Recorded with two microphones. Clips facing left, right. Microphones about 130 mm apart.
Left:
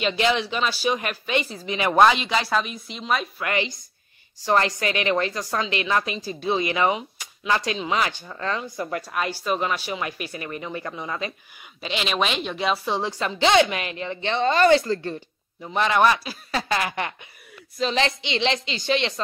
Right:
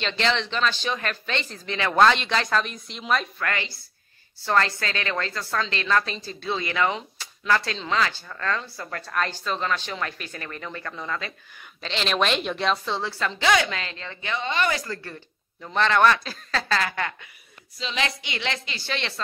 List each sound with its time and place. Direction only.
0.0 s a woman's voice: 10° left (ahead or behind)
3.3 s speech: 15° left (ahead or behind)
14.4 s a woman's voice: 40° left (ahead or behind); by 19.2 s 20° left (ahead or behind)